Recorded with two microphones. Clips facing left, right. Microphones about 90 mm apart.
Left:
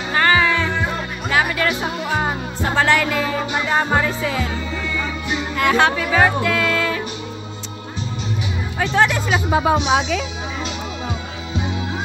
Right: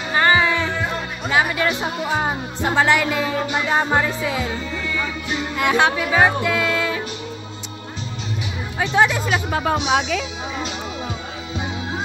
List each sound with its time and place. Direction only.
0.1 s music: 20° right (ahead or behind)
2.0 s speech: 15° right (ahead or behind)
5.6 s speech: 15° right (ahead or behind)
8.7 s speech: 10° right (ahead or behind)
9.3 s a woman's voice: 10° left (ahead or behind)